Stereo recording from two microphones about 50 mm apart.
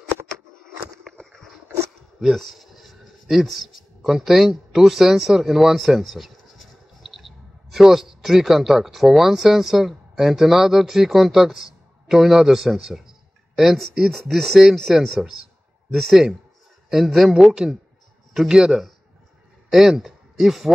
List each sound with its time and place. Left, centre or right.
1.0 s a sound: centre
2.3 s speech: centre
14.1 s speech: centre
17.4 s speech: centre